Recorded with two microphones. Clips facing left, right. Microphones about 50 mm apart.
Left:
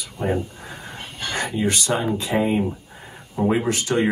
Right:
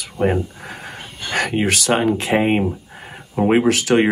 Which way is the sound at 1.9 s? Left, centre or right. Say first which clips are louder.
Right 5 dB; right.